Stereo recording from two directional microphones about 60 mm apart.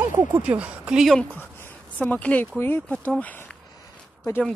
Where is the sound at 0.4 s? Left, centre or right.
Right.